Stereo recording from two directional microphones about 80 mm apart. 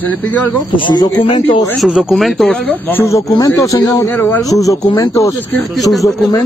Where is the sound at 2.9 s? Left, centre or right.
Left.